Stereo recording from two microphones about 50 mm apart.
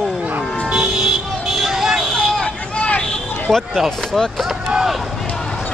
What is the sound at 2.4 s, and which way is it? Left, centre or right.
Vehicle, left.